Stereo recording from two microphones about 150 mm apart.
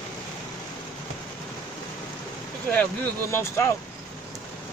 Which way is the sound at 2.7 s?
15° left (ahead or behind).